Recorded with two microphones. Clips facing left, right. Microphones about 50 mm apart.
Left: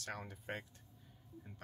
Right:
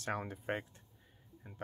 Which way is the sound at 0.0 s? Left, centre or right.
Right.